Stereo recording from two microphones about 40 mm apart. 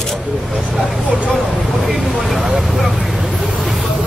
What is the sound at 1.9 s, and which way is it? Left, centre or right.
Speech, centre.